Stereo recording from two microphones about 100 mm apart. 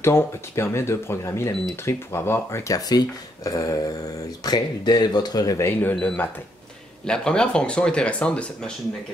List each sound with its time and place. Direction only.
0.0 s speech: 25° left (ahead or behind)
2.9 s speech: 40° left (ahead or behind)
5.6 s speech: 20° left (ahead or behind)
5.9 s speech: 10° left (ahead or behind)